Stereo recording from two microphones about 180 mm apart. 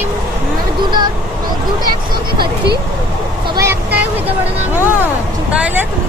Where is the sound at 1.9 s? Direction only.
60° right (ahead or behind).